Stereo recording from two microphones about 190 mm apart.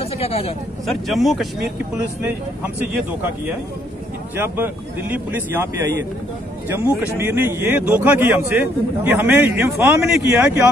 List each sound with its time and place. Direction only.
0.0 s speech: 30° left (ahead or behind)
0.8 s speech: centre (ahead or behind)
5.1 s a man's voice: 10° right (ahead or behind)